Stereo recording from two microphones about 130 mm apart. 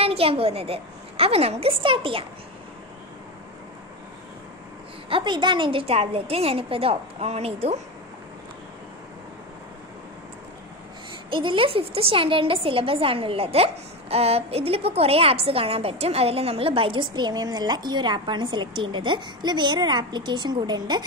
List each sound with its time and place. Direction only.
0.0 s a woman's voice: 50° right (ahead or behind)
5.1 s a woman's voice: 35° right (ahead or behind); by 7.8 s 55° right (ahead or behind)
11.2 s a woman's voice: 40° right (ahead or behind)